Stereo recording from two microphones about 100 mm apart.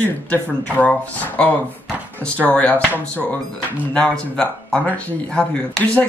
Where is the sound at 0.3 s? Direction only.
15° left (ahead or behind).